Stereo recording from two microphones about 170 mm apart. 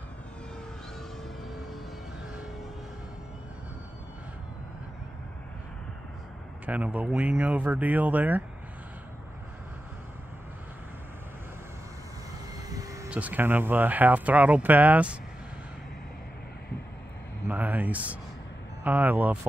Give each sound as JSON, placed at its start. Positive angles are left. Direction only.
{"t": 6.6, "sound": "speech", "side_deg": -10}
{"t": 12.6, "sound": "vehicle", "side_deg": -20}
{"t": 13.1, "sound": "speech", "side_deg": -10}
{"t": 17.5, "sound": "a sound", "side_deg": -10}
{"t": 18.9, "sound": "speech", "side_deg": -10}